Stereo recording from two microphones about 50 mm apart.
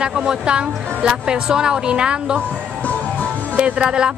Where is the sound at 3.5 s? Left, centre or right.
Right.